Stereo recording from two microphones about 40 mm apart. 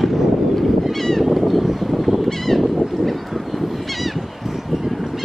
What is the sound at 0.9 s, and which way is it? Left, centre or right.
Honk, centre.